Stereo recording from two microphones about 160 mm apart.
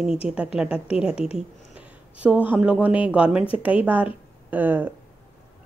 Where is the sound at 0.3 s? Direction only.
5° right (ahead or behind).